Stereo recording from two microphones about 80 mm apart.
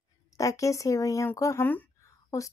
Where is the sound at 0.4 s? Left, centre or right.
Left.